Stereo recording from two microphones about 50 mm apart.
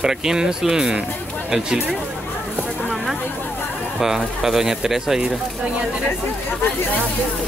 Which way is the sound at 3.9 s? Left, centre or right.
Centre.